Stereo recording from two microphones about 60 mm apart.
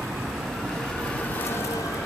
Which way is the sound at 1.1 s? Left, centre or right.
Left.